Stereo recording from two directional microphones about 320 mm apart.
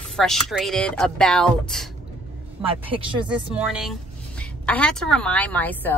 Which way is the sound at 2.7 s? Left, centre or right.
Centre.